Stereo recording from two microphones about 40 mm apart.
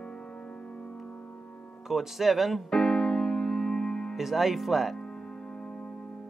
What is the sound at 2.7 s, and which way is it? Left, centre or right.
Music, centre.